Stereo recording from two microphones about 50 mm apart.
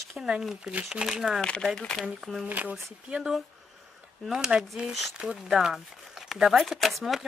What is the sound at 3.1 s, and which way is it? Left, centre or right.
Speech, centre.